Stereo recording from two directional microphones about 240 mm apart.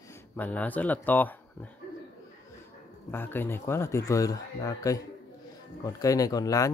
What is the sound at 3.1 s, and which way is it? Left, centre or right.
Speech, centre.